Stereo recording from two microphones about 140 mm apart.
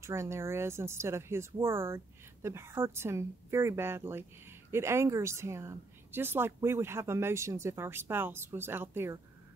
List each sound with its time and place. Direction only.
0.0 s speech: 20° right (ahead or behind)